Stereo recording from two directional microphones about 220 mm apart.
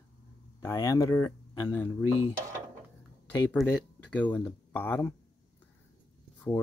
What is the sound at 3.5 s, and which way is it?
Speech, 5° left (ahead or behind).